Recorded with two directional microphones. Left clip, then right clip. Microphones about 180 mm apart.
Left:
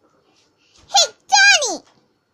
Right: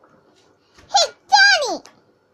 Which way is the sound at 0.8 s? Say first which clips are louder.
Left 1 dB; 10° left (ahead or behind).